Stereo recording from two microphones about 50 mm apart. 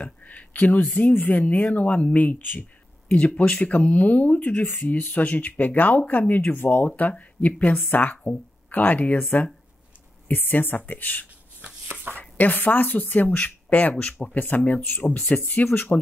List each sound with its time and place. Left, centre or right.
0.0 s speech: left
1.6 s speech: left
7.0 s speech: left
11.9 s a sound: right
12.2 s speech: left
15.0 s speech: left